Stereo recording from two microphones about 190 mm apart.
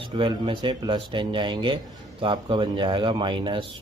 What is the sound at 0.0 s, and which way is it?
Speech, 25° right (ahead or behind).